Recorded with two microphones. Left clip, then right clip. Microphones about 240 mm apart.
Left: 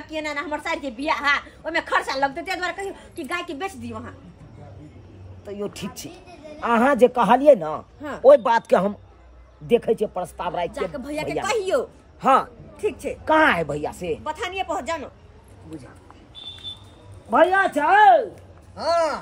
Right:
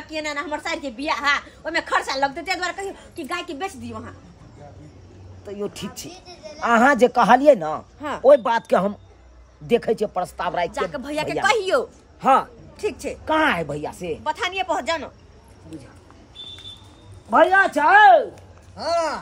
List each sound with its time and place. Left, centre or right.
0.1 s a woman's voice: centre
5.4 s a woman's voice: centre
10.7 s speech: centre
12.2 s a sound: centre
13.2 s a woman's voice: centre
14.2 s speech: centre
17.3 s speech: centre
18.8 s a woman's voice: centre